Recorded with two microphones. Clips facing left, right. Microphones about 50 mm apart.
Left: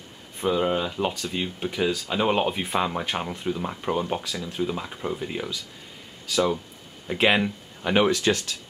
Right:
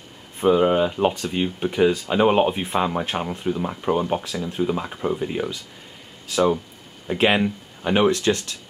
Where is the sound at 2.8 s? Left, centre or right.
Centre.